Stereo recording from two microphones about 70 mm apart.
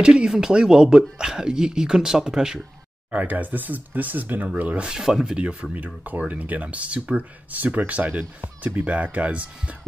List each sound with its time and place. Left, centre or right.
0.0 s speech: centre
3.1 s speech: right
4.9 s speech: centre